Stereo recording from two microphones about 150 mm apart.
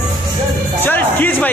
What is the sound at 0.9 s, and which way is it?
Speech, 10° left (ahead or behind).